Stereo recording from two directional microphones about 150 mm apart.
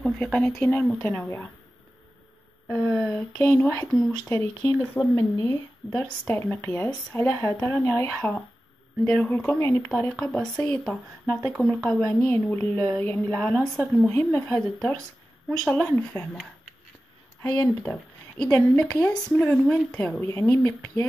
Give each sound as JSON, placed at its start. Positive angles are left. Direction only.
{"t": 0.0, "sound": "a woman's voice", "side_deg": 5}
{"t": 2.7, "sound": "a woman's voice", "side_deg": 10}